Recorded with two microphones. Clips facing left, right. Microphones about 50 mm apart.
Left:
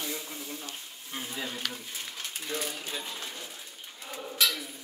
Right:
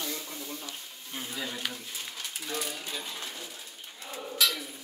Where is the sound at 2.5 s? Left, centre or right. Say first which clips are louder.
Left 1 dB; centre.